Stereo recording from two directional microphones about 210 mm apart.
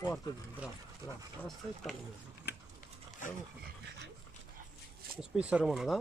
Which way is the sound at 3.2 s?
40° left (ahead or behind).